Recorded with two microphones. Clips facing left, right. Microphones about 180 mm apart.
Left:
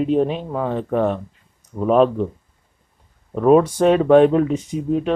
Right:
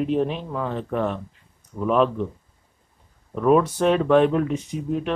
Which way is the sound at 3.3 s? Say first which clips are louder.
Left 4 dB; 35° left (ahead or behind).